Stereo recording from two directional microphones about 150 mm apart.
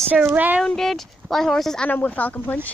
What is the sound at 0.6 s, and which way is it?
A woman's voice, 5° left (ahead or behind).